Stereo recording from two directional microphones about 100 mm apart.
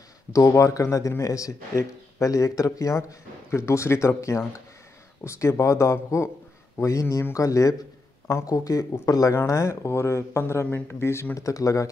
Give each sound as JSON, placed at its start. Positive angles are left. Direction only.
{"t": 0.3, "sound": "speech", "side_deg": 30}